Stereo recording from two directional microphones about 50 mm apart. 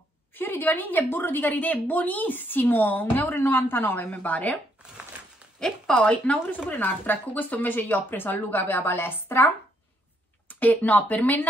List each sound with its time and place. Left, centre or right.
0.3 s a woman's voice: left
5.6 s speech: centre
6.7 s speech: left
10.5 s speech: left